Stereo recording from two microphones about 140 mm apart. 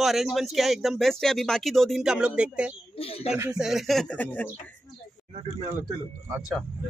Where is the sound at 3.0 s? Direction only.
45° left (ahead or behind).